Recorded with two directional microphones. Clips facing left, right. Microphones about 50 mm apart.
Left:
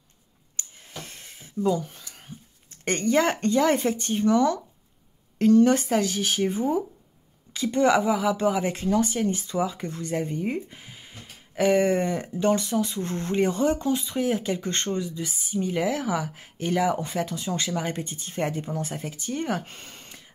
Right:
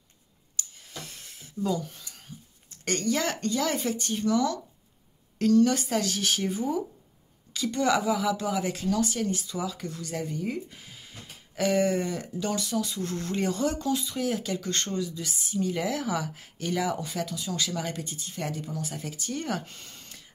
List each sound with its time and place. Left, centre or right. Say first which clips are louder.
0.6 s a sound: left 1 dB; left
2.8 s speech: left 5 dB; left
5.9 s speech: left 3 dB; centre
6.5 s speech: left 4 dB; left
19.0 s speech: left 3 dB; centre
19.6 s speech: left 3 dB; left